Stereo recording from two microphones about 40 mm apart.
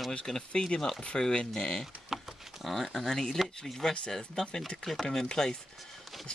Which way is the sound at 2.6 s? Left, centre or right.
Centre.